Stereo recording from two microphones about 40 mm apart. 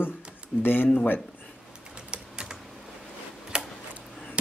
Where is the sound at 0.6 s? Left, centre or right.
Left.